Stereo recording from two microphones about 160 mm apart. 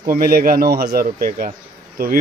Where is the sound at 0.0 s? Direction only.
65° right (ahead or behind).